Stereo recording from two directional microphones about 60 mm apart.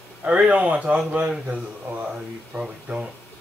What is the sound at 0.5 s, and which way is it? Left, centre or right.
Speech, right.